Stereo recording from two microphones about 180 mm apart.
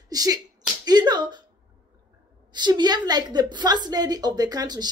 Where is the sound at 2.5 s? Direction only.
25° right (ahead or behind).